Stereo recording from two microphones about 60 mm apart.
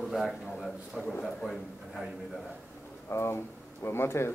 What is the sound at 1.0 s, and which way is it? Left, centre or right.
Speech, centre.